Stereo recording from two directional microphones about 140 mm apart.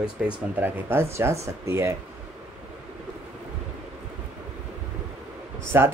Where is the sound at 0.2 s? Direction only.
5° right (ahead or behind).